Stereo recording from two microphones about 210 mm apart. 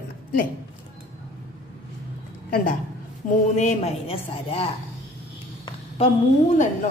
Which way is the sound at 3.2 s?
40° left (ahead or behind).